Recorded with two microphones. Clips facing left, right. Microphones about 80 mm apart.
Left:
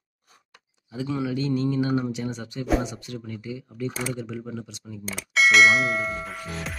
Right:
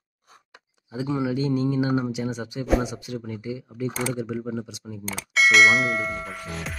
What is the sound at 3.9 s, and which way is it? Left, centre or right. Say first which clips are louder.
Speech: right 3 dB; centre.